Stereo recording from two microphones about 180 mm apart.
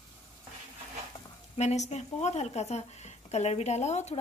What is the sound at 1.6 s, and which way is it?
A woman's voice, 40° left (ahead or behind).